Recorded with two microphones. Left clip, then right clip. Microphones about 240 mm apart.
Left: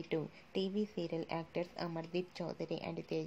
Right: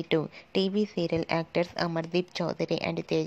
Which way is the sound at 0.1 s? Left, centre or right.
Right.